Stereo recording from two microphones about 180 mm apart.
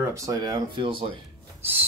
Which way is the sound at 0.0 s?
15° right (ahead or behind).